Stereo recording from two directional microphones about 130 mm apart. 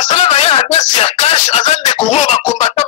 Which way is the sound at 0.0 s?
55° left (ahead or behind).